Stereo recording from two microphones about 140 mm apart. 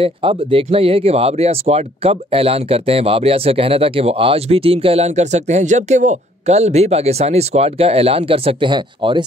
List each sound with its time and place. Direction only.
0.0 s speech: 40° right (ahead or behind)